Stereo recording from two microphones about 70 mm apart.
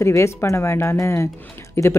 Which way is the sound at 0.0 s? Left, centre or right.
Left.